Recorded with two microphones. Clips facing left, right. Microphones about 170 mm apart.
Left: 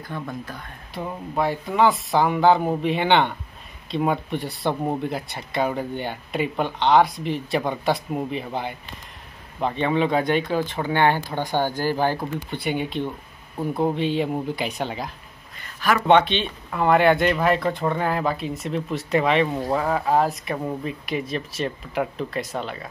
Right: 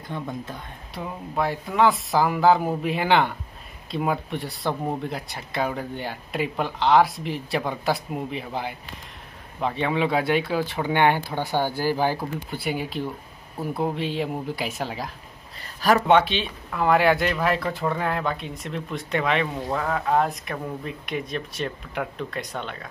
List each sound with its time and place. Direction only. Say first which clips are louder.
0.0 s speech: even; 20° right (ahead or behind)
0.9 s speech: left 2 dB; centre (ahead or behind)
15.6 s a sound: right 2 dB; 40° right (ahead or behind)
16.1 s speech: left 2 dB; 5° right (ahead or behind)